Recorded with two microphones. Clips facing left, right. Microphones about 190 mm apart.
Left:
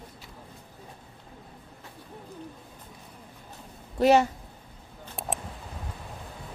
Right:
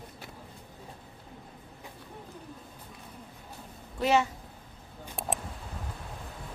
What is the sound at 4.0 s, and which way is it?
Speech, 40° left (ahead or behind).